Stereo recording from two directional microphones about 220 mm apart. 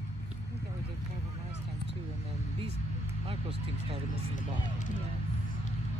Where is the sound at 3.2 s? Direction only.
25° right (ahead or behind).